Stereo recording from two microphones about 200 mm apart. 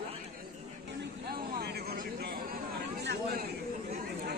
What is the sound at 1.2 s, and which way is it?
Vehicle, 50° right (ahead or behind).